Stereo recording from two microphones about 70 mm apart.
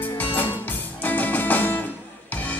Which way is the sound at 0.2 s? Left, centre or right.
Left.